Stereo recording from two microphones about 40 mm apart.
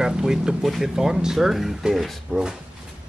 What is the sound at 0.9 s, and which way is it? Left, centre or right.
Speech, centre.